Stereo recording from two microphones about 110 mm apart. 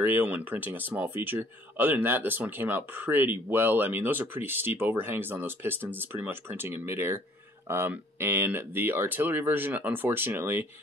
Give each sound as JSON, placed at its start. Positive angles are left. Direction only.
{"t": 0.0, "sound": "speech", "side_deg": -15}